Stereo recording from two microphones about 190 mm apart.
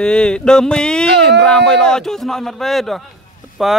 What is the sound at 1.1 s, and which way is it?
Speech, 60° right (ahead or behind).